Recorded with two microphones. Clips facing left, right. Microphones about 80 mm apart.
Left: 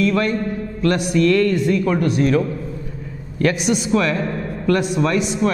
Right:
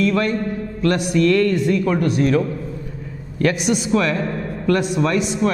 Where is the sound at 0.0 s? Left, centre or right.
Centre.